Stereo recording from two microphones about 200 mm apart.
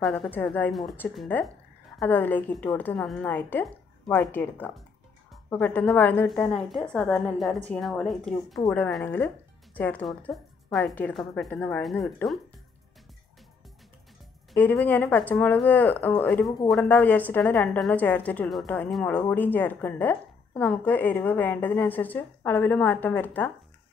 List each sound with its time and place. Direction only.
0.0 s a woman's voice: centre (ahead or behind)
14.5 s speech: 10° left (ahead or behind)